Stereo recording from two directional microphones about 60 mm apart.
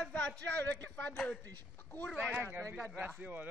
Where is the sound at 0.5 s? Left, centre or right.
Left.